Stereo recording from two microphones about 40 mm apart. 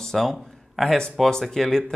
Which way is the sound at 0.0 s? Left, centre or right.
Centre.